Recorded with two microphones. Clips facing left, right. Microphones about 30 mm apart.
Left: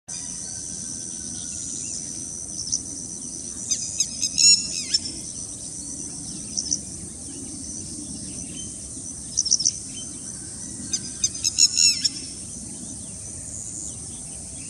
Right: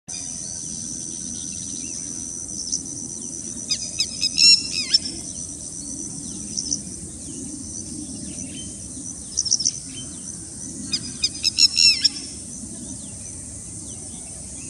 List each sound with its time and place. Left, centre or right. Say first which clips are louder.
3.6 s bird: right 3 dB; right
5.9 s a sound: right 4 dB; left
6.5 s bird: even; centre
9.4 s bird: even; centre
10.9 s bird: right 3 dB; right